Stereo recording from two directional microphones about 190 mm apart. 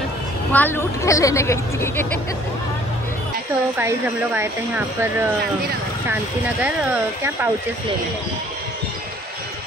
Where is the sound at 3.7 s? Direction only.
10° right (ahead or behind).